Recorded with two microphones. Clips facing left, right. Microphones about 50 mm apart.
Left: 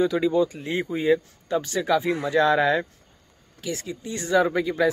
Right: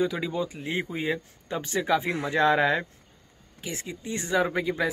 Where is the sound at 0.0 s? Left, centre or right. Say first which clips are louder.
Left 6 dB; centre.